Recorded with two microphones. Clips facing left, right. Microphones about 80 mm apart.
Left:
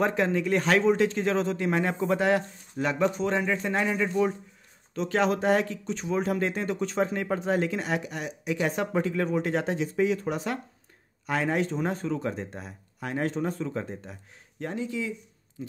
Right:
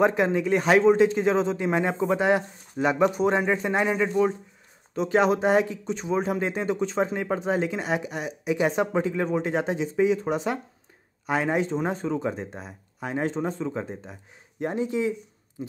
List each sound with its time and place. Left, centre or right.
0.0 s speech: centre
14.6 s speech: right